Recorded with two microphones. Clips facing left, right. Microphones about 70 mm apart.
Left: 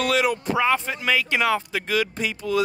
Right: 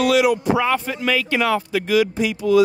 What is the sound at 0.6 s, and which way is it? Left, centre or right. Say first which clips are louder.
Speech: right 2 dB; left.